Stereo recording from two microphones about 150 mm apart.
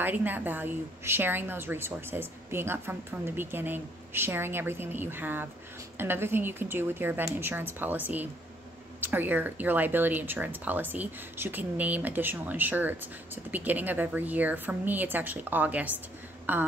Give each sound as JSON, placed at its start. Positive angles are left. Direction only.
{"t": 0.0, "sound": "speech", "side_deg": -10}